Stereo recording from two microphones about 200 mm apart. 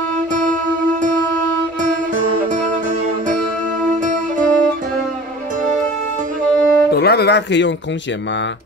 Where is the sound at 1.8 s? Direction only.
40° right (ahead or behind).